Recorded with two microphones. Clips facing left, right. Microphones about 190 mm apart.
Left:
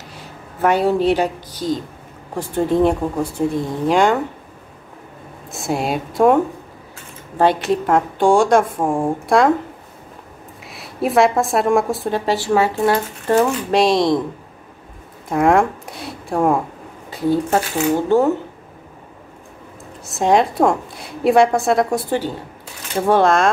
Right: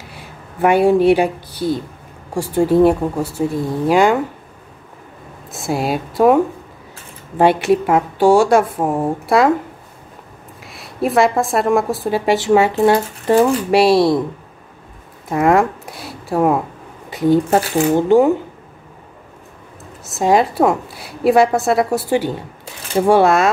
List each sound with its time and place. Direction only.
0.1 s speech: 10° right (ahead or behind)
5.5 s a woman's voice: centre (ahead or behind)
10.6 s a woman's voice: centre (ahead or behind)
12.3 s speech: 20° right (ahead or behind)
15.2 s speech: centre (ahead or behind)
17.9 s speech: 15° right (ahead or behind)
20.1 s a woman's voice: centre (ahead or behind)